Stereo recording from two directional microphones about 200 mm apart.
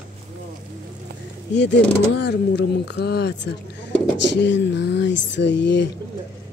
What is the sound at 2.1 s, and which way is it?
Speech, 60° left (ahead or behind).